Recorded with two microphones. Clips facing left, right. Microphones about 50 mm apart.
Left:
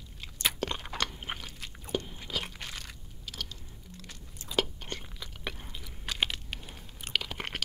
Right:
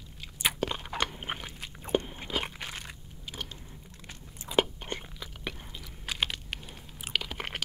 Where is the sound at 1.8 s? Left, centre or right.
Right.